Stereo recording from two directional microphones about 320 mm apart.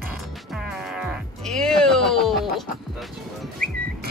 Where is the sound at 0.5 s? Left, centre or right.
Centre.